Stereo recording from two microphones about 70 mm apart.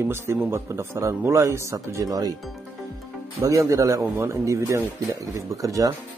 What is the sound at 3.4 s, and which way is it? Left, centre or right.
A man's voice, right.